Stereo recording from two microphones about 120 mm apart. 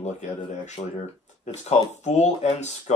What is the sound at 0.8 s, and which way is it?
Speech, 60° left (ahead or behind).